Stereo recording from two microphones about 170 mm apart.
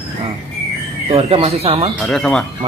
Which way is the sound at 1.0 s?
35° right (ahead or behind).